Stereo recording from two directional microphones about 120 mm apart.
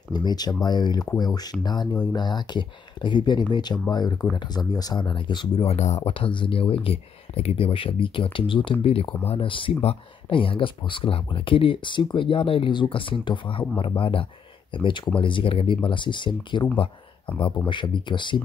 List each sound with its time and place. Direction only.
0.1 s speech: 35° left (ahead or behind)
5.7 s speech: 70° left (ahead or behind)
6.1 s speech: 45° left (ahead or behind)
17.6 s speech: 40° left (ahead or behind)